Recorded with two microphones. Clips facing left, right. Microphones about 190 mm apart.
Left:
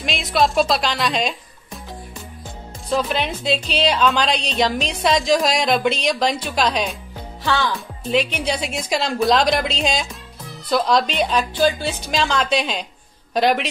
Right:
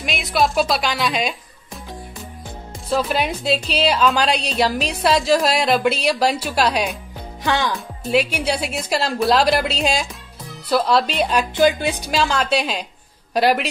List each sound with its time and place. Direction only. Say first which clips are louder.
0.0 s a woman's voice: left 1 dB; centre (ahead or behind)
2.9 s a woman's voice: right 1 dB; 5° right (ahead or behind)
11.5 s a woman's voice: right 2 dB; 15° right (ahead or behind)
12.1 s a woman's voice: even; 5° right (ahead or behind)